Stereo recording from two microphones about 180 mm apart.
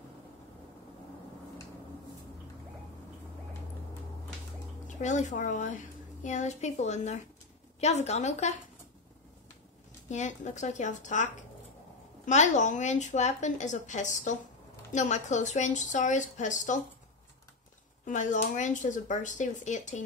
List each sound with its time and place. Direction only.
4.8 s a woman's voice: 40° left (ahead or behind)
10.0 s speech: 40° left (ahead or behind)
12.3 s speech: 40° left (ahead or behind)
18.0 s speech: 45° left (ahead or behind)